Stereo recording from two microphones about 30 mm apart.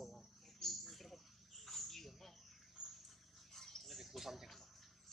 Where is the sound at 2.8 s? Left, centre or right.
Right.